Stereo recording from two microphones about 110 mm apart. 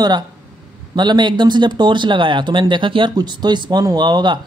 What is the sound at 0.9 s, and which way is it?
Speech, 40° right (ahead or behind).